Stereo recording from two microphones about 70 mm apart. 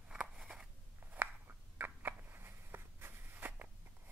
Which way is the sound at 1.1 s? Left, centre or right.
Right.